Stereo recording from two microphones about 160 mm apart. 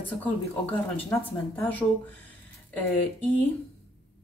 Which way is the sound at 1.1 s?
10° left (ahead or behind).